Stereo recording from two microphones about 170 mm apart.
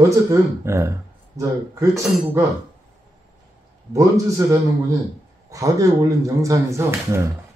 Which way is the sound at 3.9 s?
20° right (ahead or behind).